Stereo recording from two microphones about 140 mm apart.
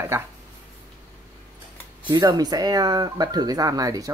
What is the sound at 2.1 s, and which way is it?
Speech, 25° right (ahead or behind).